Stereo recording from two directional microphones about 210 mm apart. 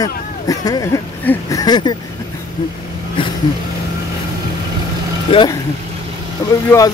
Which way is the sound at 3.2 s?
25° left (ahead or behind).